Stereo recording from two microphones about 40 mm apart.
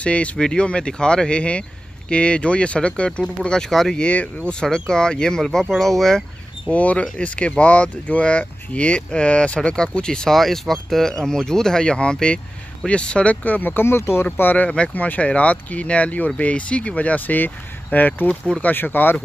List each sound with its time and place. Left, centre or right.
0.0 s speech: left; by 3.9 s centre
3.9 s speech: left; by 6.2 s centre
6.7 s speech: left
9.8 s speech: centre
10.3 s speech: centre; by 13.8 s left
13.8 s speech: left
14.4 s speech: left
15.0 s speech: left